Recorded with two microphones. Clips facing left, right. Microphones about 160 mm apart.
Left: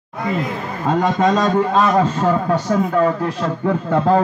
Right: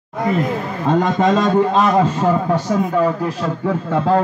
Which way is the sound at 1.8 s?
10° right (ahead or behind).